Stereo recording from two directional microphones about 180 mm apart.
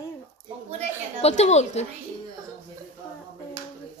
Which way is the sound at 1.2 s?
35° left (ahead or behind).